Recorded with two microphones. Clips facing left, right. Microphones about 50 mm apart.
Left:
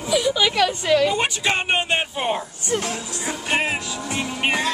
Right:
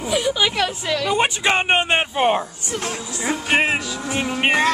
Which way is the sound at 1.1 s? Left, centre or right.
Right.